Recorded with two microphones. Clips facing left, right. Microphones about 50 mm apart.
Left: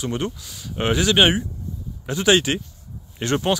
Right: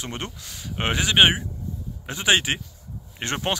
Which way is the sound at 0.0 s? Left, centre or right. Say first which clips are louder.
Left 7 dB; right.